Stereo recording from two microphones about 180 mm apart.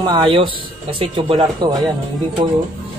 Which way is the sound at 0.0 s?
25° right (ahead or behind).